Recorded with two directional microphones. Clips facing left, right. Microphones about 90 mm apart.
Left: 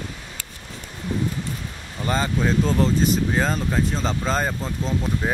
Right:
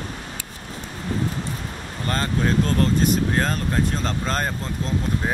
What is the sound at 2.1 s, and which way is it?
Speech, 5° left (ahead or behind).